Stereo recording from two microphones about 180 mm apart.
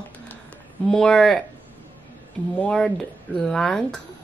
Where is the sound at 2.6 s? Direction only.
5° left (ahead or behind).